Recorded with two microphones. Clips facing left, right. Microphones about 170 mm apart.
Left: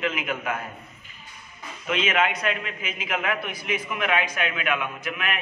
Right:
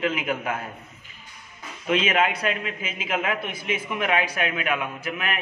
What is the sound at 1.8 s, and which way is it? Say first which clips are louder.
A man's voice: right 2 dB; 35° right (ahead or behind).